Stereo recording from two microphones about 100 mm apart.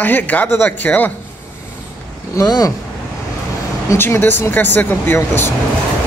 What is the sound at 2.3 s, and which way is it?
Speech, 35° left (ahead or behind).